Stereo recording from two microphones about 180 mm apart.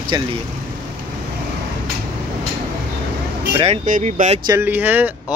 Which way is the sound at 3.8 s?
45° right (ahead or behind).